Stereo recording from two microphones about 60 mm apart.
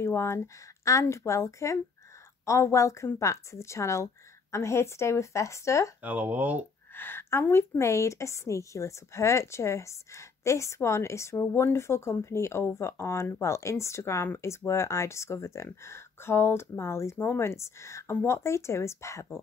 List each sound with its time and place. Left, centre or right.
0.0 s a woman's voice: left
6.0 s speech: right
7.0 s a woman's voice: left